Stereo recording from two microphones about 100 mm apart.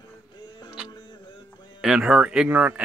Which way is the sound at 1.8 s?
10° right (ahead or behind).